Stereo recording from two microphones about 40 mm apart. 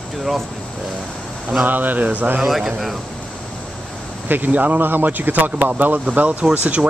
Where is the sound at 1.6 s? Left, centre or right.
Right.